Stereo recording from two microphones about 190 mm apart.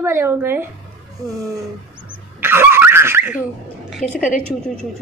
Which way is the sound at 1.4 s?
20° right (ahead or behind).